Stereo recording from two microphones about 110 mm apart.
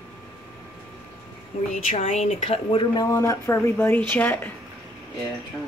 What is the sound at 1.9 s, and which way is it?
Speech, 90° left.